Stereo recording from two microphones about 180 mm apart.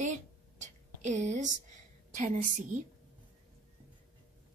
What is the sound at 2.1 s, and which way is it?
Speech, 45° right (ahead or behind).